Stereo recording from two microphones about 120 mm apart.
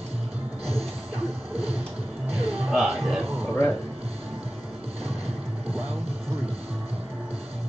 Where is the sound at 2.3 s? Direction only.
55° right (ahead or behind).